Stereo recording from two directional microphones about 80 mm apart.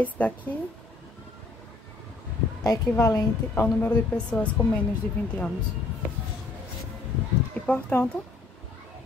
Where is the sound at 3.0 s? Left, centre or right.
Left.